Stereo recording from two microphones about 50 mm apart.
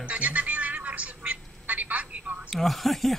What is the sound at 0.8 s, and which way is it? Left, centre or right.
Telephone, right.